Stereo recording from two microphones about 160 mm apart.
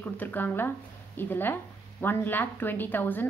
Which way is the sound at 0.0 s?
10° left (ahead or behind).